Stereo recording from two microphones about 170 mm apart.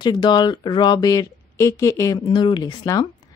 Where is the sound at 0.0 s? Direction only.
25° left (ahead or behind).